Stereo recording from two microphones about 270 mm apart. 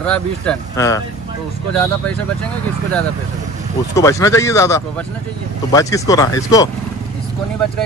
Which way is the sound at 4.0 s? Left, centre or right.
Centre.